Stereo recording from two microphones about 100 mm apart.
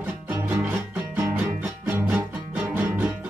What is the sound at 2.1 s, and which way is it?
Music, 15° right (ahead or behind).